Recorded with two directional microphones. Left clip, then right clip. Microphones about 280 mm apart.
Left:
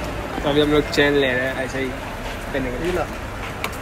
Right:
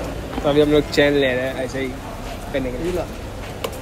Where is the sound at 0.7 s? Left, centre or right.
Centre.